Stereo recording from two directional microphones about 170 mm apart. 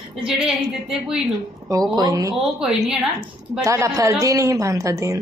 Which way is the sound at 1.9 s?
20° right (ahead or behind).